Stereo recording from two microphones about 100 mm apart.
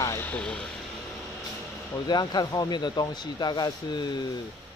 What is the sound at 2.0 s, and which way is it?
Speech, 45° left (ahead or behind).